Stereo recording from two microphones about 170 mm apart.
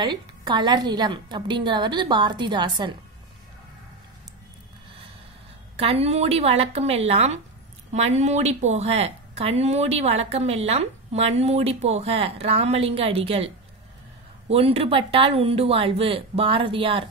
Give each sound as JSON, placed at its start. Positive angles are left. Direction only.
{"t": 0.0, "sound": "a woman's voice", "side_deg": -25}
{"t": 5.8, "sound": "speech", "side_deg": -35}
{"t": 14.5, "sound": "speech", "side_deg": -35}